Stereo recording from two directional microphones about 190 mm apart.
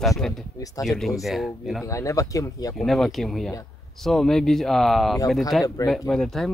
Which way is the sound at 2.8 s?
Centre (ahead or behind).